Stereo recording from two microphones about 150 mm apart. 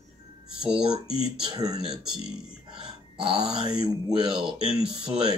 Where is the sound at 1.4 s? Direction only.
25° right (ahead or behind).